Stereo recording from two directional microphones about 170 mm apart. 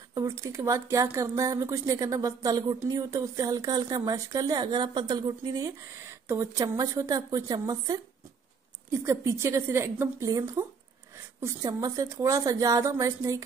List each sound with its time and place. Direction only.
0.1 s speech: 20° right (ahead or behind)
9.0 s a woman's voice: 15° right (ahead or behind)